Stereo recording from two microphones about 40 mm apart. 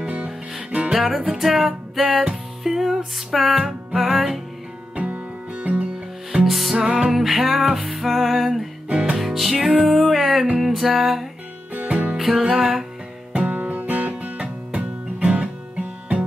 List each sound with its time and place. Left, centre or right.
0.0 s music: right
0.9 s music: centre
4.9 s music: right
6.4 s music: centre
6.8 s music: centre
7.2 s music: centre
8.8 s music: right
9.2 s music: centre
11.9 s music: right
12.4 s music: centre
13.3 s music: right